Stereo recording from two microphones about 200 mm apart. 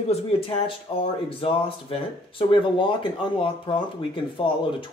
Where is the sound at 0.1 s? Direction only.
25° left (ahead or behind).